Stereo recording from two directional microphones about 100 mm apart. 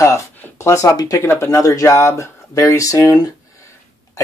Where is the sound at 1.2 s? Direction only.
25° left (ahead or behind).